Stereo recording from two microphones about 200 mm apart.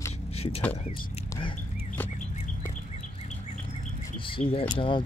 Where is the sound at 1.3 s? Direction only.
25° left (ahead or behind).